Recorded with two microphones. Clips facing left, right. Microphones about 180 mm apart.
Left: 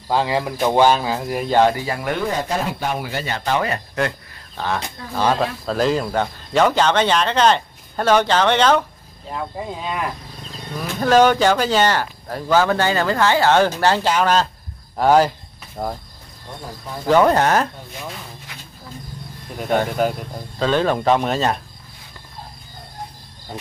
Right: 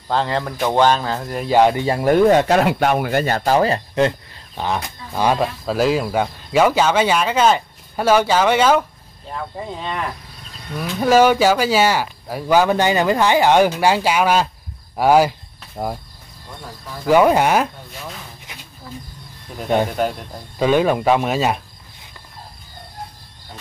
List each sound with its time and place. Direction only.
0.1 s speech: 10° left (ahead or behind)
1.5 s speech: 10° right (ahead or behind)
1.8 s speech: 30° right (ahead or behind)
2.2 s speech: 70° right (ahead or behind); by 8.8 s 10° right (ahead or behind)
9.3 s speech: 5° left (ahead or behind)
10.8 s speech: 10° right (ahead or behind)
17.1 s speech: 10° right (ahead or behind)
18.5 s a sound: 20° right (ahead or behind)
20.0 s speech: 5° left (ahead or behind)
20.5 s speech: 10° right (ahead or behind)